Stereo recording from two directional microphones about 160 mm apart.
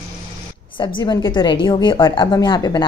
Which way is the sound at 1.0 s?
30° left (ahead or behind).